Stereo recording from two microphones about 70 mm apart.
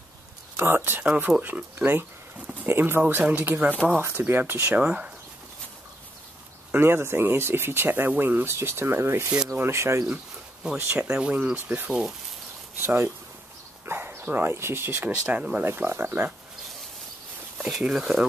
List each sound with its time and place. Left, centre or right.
0.6 s speech: right
1.0 s speech: centre
4.7 s speech: centre
6.7 s speech: right
10.0 s a sound: centre
11.0 s speech: centre
12.8 s speech: right
15.6 s speech: right
17.8 s speech: centre